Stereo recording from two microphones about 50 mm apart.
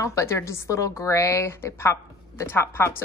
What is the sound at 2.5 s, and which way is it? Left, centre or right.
Speech, left.